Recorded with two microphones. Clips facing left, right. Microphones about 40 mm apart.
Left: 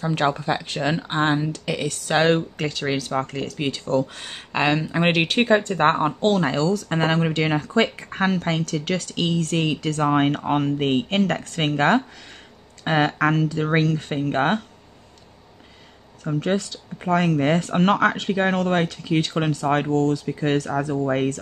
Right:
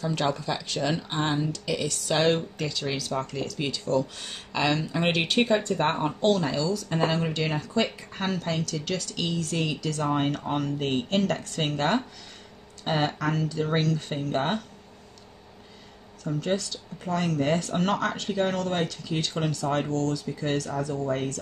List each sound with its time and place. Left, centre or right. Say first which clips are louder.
0.0 s speech: left 5 dB; left
16.3 s speech: left 4 dB; left